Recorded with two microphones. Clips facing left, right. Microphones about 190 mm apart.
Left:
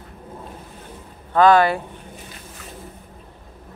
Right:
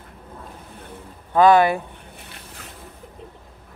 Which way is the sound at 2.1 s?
65° right (ahead or behind).